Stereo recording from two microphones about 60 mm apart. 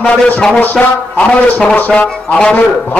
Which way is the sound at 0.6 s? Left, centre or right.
Left.